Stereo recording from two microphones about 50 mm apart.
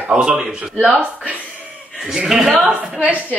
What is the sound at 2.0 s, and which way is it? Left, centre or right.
Speech, centre.